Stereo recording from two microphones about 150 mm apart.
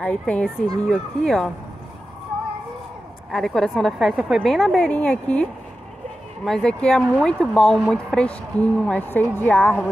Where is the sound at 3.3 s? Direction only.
Centre (ahead or behind).